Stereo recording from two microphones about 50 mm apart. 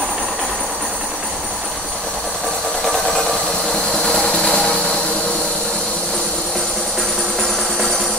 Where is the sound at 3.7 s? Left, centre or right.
Centre.